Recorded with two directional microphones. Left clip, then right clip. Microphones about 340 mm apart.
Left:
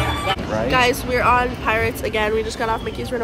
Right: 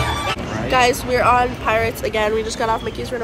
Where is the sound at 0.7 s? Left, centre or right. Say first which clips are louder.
Right 2 dB; centre.